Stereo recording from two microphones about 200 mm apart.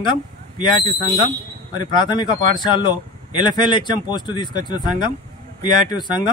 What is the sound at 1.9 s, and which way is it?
A man's voice, 20° left (ahead or behind).